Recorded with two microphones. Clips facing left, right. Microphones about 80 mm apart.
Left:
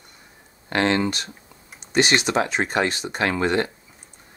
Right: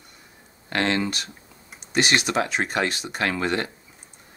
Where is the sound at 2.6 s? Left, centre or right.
Centre.